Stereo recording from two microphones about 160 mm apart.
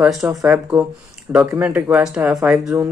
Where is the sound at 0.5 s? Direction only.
15° right (ahead or behind).